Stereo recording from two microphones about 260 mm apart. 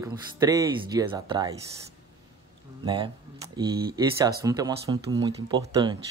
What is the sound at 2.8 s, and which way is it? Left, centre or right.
Speech, centre.